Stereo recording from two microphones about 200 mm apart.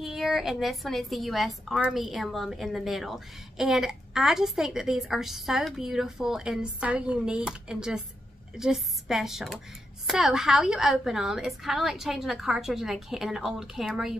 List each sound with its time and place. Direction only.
0.0 s a woman's voice: centre (ahead or behind)